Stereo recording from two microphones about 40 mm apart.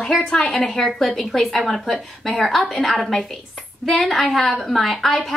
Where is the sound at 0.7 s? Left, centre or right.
Centre.